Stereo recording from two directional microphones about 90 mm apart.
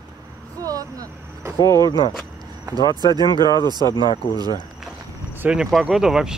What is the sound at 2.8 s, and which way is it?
Speech, 50° left (ahead or behind).